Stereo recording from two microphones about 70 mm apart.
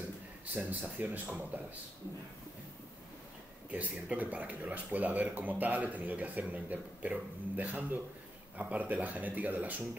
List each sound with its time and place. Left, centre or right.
0.6 s speech: right
3.7 s speech: centre